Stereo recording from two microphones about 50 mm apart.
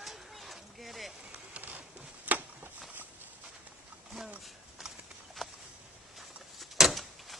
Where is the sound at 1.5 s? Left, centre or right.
Right.